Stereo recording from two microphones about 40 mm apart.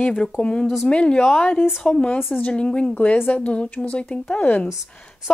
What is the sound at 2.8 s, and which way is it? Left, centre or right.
Speech, left.